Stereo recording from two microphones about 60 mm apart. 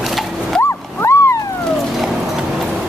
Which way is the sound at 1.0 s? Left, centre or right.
Left.